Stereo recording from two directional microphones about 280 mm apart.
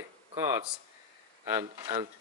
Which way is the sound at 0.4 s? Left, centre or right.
Centre.